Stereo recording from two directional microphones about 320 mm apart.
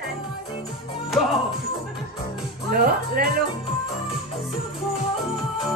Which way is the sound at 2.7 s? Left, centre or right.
Right.